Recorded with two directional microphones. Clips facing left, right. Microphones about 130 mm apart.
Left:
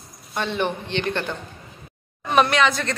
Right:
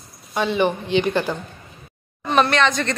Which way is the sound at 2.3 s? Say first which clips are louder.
Right 1 dB; 10° left (ahead or behind).